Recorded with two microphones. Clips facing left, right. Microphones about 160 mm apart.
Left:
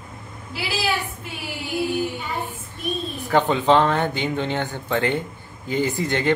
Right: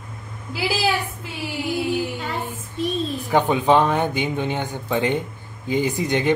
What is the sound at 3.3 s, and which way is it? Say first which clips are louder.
Speech: even; 15° right (ahead or behind).